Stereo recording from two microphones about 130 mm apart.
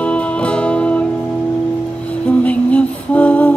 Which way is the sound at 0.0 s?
10° left (ahead or behind).